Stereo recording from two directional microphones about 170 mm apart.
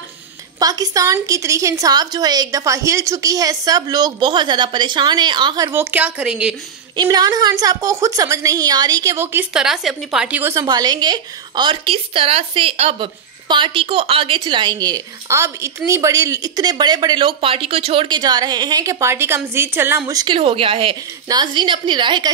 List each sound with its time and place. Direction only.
0.6 s a woman's voice: 20° right (ahead or behind)
5.7 s a woman's voice: 15° right (ahead or behind)
7.0 s a woman's voice: 25° right (ahead or behind)